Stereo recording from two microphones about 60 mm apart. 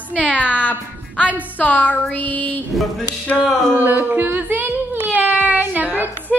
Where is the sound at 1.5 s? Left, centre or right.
Left.